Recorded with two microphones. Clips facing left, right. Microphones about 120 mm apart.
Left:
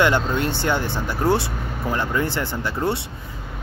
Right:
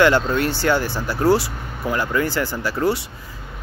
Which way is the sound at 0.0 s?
20° left (ahead or behind).